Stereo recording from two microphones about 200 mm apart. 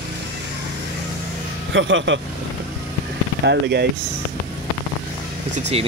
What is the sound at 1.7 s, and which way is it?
Speech, 65° right (ahead or behind).